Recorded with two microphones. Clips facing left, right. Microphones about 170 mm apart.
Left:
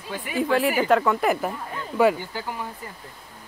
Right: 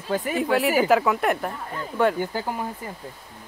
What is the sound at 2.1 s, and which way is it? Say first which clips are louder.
Speech: right 6 dB; 50° right (ahead or behind).